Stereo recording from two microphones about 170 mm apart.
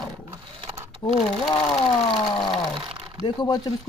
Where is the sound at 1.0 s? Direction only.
25° left (ahead or behind).